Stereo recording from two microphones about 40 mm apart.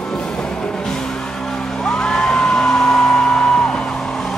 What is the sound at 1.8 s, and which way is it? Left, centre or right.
Music, centre.